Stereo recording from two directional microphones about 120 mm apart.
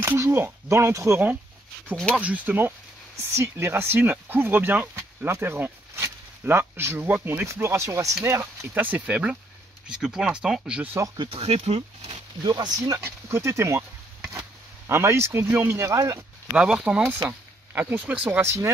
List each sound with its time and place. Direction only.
0.0 s speech: 20° right (ahead or behind)
8.7 s speech: 10° right (ahead or behind)
11.1 s speech: 50° right (ahead or behind)
12.4 s speech: 35° right (ahead or behind)
16.5 s speech: 10° right (ahead or behind)